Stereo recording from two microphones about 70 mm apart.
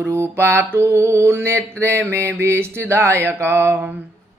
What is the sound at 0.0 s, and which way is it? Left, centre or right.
Mantra, right.